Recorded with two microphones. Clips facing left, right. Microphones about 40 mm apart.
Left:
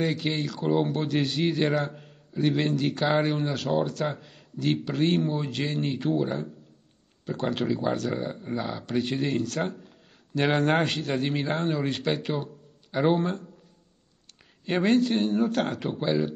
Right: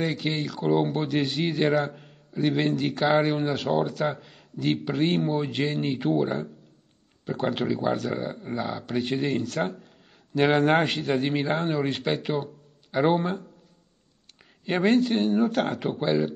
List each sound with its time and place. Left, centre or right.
0.0 s speech: centre
14.4 s speech: centre